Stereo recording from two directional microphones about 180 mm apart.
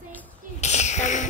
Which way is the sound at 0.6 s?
40° left (ahead or behind).